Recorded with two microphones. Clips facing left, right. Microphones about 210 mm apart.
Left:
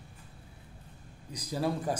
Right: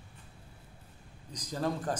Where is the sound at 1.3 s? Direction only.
10° left (ahead or behind).